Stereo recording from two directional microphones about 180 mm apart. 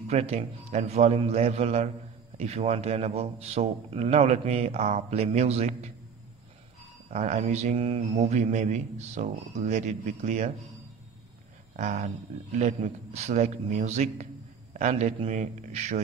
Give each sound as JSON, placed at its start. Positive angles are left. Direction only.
{"t": 0.1, "sound": "a man's voice", "side_deg": -35}
{"t": 7.1, "sound": "a man's voice", "side_deg": -40}
{"t": 11.7, "sound": "a man's voice", "side_deg": -40}